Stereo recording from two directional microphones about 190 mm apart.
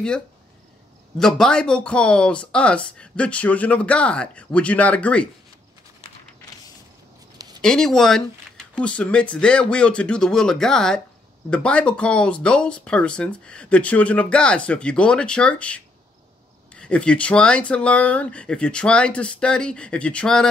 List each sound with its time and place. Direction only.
1.1 s speech: 5° left (ahead or behind)
7.3 s a sound: 20° right (ahead or behind)
7.6 s speech: 5° left (ahead or behind)